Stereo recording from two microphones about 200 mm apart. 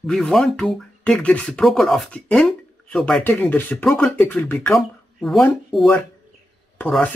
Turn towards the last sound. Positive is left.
turn(degrees=10)  # may be behind; listen again after turning